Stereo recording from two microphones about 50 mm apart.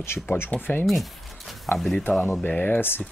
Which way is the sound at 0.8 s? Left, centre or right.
Centre.